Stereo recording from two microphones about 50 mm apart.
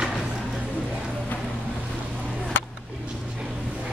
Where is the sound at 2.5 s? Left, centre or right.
Left.